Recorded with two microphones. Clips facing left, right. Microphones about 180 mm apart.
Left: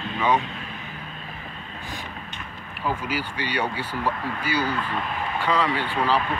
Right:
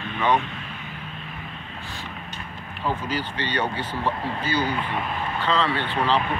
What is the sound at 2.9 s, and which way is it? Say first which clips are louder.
Speech: even; 10° left (ahead or behind).